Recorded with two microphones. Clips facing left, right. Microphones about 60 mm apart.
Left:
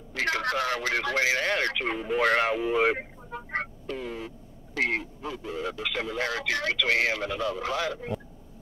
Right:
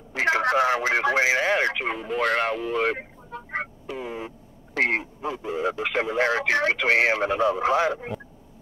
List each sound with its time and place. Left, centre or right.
0.1 s radio: right
1.9 s speech: centre
3.5 s vehicle: centre
4.7 s speech: right